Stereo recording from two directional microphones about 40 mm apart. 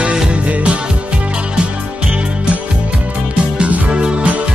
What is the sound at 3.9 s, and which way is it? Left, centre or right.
Music, right.